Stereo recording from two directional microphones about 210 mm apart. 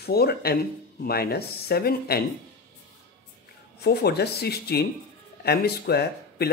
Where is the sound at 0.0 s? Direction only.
50° left (ahead or behind).